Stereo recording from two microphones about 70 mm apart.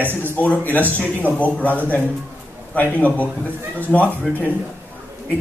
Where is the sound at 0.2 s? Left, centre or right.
Left.